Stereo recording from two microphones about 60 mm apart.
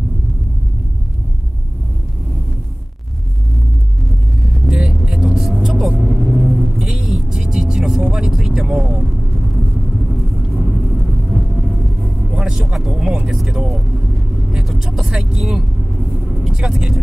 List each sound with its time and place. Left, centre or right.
4.6 s vehicle: centre
5.5 s vehicle: centre
7.2 s vehicle: centre
10.5 s vehicle: right
12.5 s vehicle: centre
16.0 s vehicle: right
16.4 s vehicle: centre